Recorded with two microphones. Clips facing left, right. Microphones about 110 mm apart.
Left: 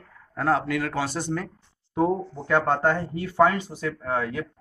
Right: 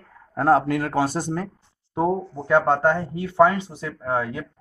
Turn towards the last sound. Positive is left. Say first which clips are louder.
# right 2 dB
turn(degrees=-25)  # may be behind; listen again after turning